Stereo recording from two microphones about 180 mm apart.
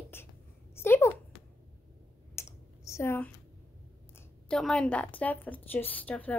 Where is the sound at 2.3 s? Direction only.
15° left (ahead or behind).